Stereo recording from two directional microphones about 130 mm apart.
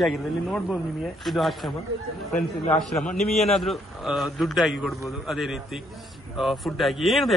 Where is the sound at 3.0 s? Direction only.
5° left (ahead or behind).